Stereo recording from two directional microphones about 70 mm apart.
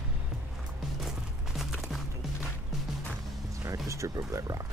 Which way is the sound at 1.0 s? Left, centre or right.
Centre.